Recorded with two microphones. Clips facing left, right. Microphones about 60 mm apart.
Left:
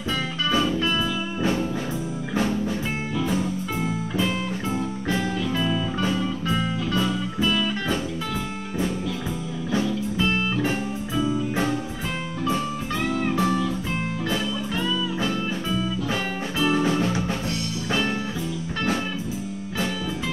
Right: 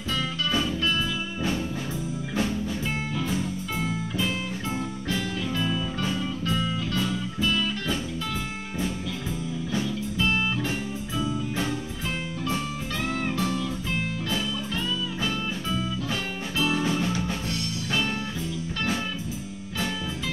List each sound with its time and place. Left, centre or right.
0.1 s music: left
3.8 s music: left
9.7 s music: left
12.4 s music: left
16.1 s music: left